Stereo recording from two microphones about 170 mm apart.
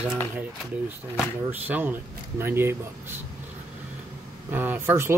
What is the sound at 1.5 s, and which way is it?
Speech, 10° right (ahead or behind).